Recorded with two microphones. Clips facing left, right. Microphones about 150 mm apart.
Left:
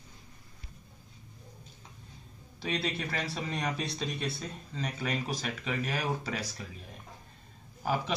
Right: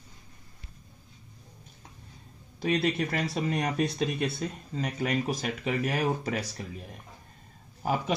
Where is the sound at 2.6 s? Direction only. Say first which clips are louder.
Right 7 dB; 45° right (ahead or behind).